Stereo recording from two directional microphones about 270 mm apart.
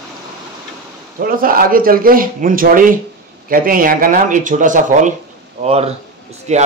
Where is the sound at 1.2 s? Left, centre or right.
Right.